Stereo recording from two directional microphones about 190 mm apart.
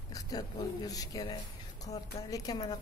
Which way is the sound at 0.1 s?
20° left (ahead or behind).